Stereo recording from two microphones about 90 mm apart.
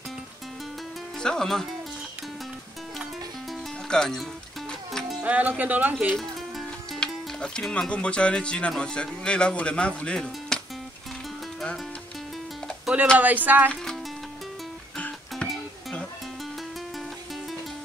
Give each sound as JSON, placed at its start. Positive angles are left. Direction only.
{"t": 1.2, "sound": "speech", "side_deg": 5}
{"t": 3.9, "sound": "music", "side_deg": 5}
{"t": 5.2, "sound": "speech", "side_deg": -15}
{"t": 6.9, "sound": "speech", "side_deg": 10}
{"t": 13.2, "sound": "speech", "side_deg": -20}
{"t": 15.0, "sound": "music", "side_deg": 15}